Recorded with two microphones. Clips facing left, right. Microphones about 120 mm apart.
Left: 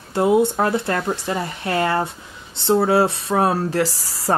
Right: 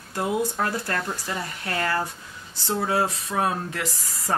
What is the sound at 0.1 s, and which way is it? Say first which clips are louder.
Speech: left 9 dB; 25° left (ahead or behind).